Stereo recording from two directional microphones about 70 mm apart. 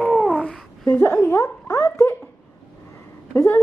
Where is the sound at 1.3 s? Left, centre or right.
Left.